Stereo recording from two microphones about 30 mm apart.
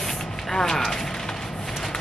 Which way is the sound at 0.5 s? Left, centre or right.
Centre.